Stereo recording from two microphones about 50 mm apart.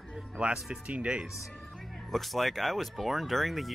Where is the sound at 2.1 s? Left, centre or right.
Centre.